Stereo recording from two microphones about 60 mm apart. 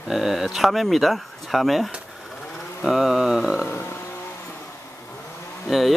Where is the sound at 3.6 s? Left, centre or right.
Left.